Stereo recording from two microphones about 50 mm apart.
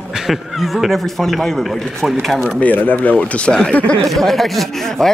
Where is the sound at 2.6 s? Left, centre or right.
Left; by 3.7 s centre.